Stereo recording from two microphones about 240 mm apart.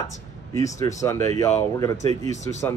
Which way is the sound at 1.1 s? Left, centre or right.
Right.